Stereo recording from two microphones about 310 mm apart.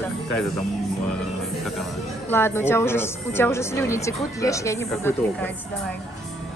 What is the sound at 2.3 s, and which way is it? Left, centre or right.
A woman's voice, centre.